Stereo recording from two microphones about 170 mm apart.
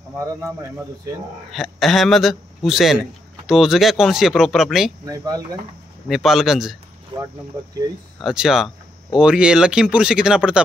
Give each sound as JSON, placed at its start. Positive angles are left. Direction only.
{"t": 1.5, "sound": "a man's voice", "side_deg": 0}
{"t": 5.0, "sound": "speech", "side_deg": -20}
{"t": 6.0, "sound": "a man's voice", "side_deg": 0}
{"t": 8.2, "sound": "a man's voice", "side_deg": -5}